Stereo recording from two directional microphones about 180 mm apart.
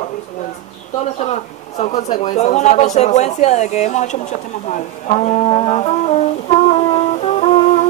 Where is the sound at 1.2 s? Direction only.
40° left (ahead or behind).